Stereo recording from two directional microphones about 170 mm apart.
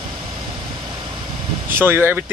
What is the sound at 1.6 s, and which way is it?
Speech, 15° right (ahead or behind).